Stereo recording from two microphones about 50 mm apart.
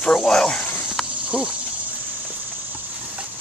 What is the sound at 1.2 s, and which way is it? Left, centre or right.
Cricket, right.